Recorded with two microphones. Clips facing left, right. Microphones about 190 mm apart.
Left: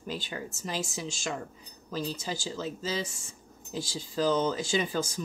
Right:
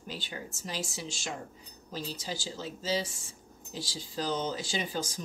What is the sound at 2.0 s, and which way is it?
Speech, 45° left (ahead or behind).